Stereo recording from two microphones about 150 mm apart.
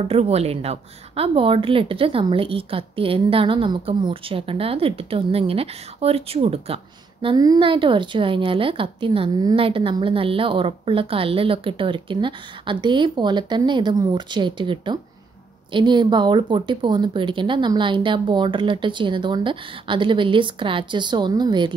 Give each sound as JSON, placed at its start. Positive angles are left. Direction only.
{"t": 0.1, "sound": "a woman's voice", "side_deg": -45}